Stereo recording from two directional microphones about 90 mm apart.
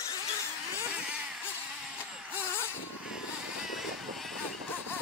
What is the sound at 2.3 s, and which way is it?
Vehicle, 25° left (ahead or behind).